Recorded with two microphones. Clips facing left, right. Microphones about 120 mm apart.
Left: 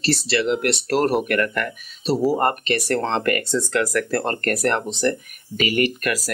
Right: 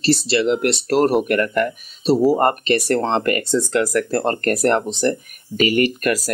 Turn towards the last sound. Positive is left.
turn(degrees=-35)  # may be behind; listen again after turning